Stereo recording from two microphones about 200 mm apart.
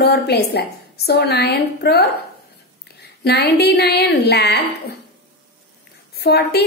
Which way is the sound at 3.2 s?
55° left (ahead or behind).